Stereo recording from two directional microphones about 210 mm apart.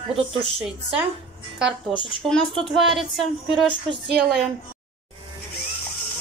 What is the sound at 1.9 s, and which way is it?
Speech, 25° left (ahead or behind).